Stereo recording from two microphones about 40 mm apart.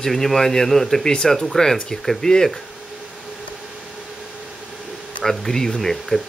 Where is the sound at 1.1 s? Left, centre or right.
Left.